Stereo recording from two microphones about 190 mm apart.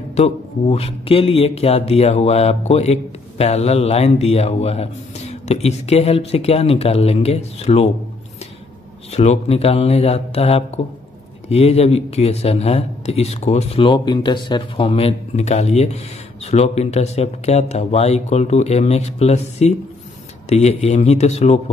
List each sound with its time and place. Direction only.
0.1 s speech: 35° left (ahead or behind)
9.1 s speech: 35° left (ahead or behind)